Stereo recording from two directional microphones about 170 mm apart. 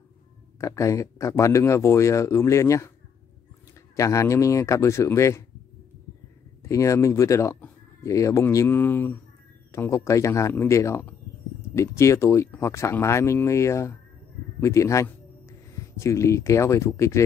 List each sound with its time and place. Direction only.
0.6 s speech: 20° left (ahead or behind)
3.9 s speech: 20° left (ahead or behind)
6.6 s speech: 20° left (ahead or behind)
14.6 s music: 20° left (ahead or behind)
16.0 s speech: 15° left (ahead or behind)